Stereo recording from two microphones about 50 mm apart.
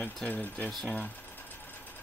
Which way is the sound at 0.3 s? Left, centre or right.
Left.